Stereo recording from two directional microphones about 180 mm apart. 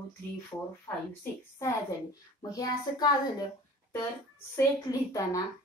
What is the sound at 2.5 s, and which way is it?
Speech, 20° left (ahead or behind).